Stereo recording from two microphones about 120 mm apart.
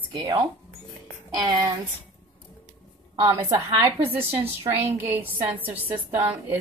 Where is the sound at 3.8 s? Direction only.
20° right (ahead or behind).